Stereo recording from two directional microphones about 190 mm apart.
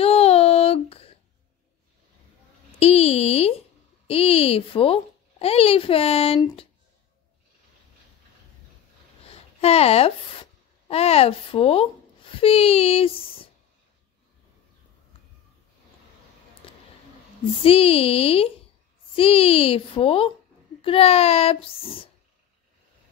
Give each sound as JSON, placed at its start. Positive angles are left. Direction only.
{"t": 0.0, "sound": "child singing", "side_deg": 30}
{"t": 2.8, "sound": "a sound", "side_deg": 35}
{"t": 4.1, "sound": "a child's voice", "side_deg": 30}
{"t": 9.6, "sound": "a child's voice", "side_deg": 30}
{"t": 16.6, "sound": "a sound", "side_deg": 30}
{"t": 17.6, "sound": "a child's voice", "side_deg": 30}